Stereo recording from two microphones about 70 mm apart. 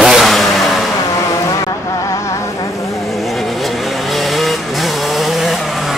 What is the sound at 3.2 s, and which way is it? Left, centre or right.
Vehicle, centre.